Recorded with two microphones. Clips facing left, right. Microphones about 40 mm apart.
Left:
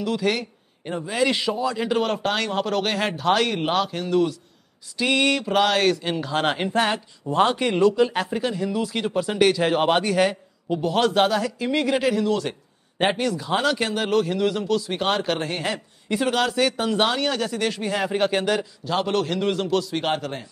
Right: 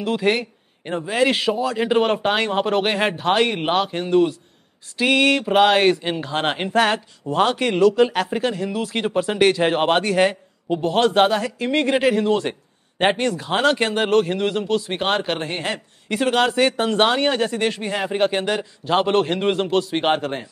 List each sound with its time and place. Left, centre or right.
0.0 s a man's voice: right
5.0 s a sound: centre
5.4 s speech: right
11.5 s a man's voice: right